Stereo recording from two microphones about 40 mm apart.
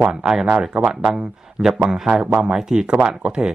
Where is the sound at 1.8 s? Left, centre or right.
Right.